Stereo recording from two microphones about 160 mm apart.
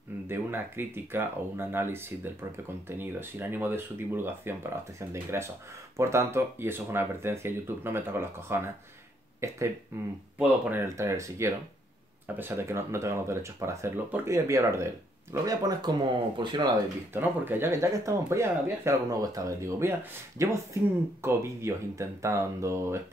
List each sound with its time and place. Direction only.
0.3 s speech: 15° right (ahead or behind)
17.1 s speech: 15° right (ahead or behind)